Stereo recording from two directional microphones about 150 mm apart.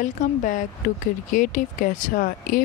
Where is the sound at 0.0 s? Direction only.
55° left (ahead or behind).